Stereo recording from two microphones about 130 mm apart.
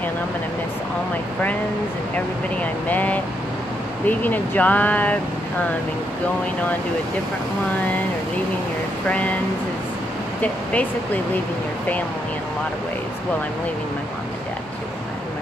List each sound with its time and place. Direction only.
2.1 s speech: 10° left (ahead or behind)
9.0 s speech: 10° left (ahead or behind)
10.4 s speech: 10° left (ahead or behind)